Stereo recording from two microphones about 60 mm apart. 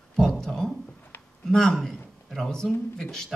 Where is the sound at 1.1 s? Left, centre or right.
Left.